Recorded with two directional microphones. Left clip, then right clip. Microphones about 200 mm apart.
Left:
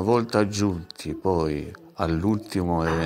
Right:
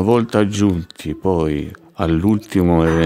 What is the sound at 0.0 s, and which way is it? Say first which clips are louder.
Speech: right 6 dB; 30° right (ahead or behind).